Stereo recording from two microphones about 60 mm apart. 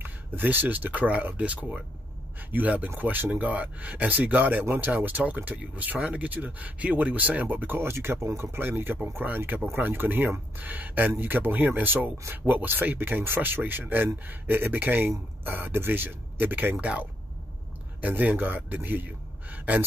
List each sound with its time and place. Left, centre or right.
0.0 s speech: right
18.0 s a man's voice: right